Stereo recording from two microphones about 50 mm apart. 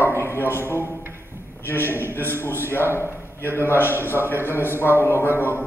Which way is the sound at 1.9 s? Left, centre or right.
Right.